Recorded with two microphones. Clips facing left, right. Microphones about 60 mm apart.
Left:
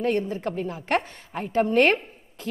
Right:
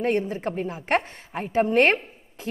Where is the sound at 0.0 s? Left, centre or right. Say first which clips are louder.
Right 1 dB; centre.